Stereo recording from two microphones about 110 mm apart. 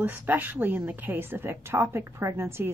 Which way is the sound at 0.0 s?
15° right (ahead or behind).